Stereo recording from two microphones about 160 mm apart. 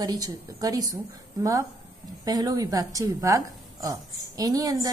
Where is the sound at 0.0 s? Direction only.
25° right (ahead or behind).